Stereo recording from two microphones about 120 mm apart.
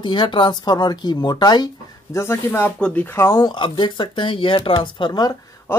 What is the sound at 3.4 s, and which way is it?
A woman's voice, 40° left (ahead or behind).